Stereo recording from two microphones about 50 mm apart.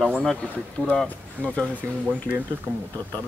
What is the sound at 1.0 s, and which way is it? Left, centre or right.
Speech, left.